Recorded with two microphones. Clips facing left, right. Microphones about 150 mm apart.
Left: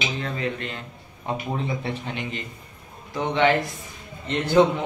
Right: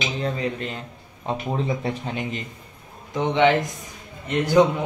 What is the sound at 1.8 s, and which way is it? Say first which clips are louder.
Speech: right 3 dB; 40° right (ahead or behind).